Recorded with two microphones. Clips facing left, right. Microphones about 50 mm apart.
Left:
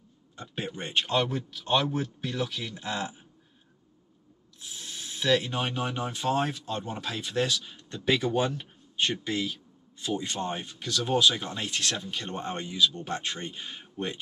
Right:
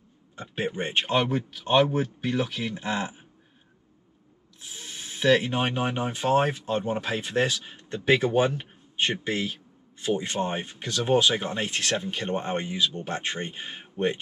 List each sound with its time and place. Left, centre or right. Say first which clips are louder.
0.4 s speech: right 6 dB; right
4.6 s speech: right 1 dB; right